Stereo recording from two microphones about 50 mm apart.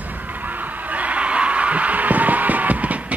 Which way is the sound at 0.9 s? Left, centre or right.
Right.